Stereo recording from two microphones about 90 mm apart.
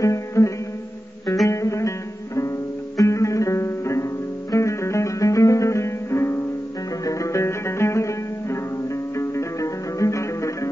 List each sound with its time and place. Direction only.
0.0 s music: 35° left (ahead or behind)